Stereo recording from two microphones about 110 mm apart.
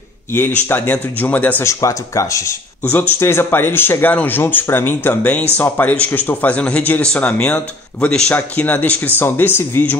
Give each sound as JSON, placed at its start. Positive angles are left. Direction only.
{"t": 0.3, "sound": "speech", "side_deg": 20}
{"t": 1.7, "sound": "speech", "side_deg": 30}
{"t": 2.9, "sound": "speech", "side_deg": 20}